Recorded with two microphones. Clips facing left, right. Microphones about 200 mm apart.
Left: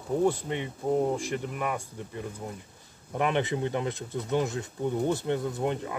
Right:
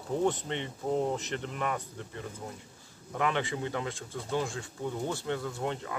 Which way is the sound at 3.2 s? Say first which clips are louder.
Left 4 dB; 20° left (ahead or behind).